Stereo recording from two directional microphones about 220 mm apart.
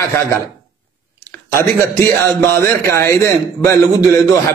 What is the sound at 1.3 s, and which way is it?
Speech, 10° left (ahead or behind).